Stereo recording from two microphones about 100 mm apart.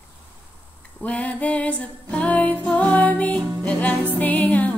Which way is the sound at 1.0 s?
15° left (ahead or behind).